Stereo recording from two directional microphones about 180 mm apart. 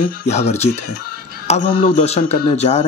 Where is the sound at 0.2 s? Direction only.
35° left (ahead or behind).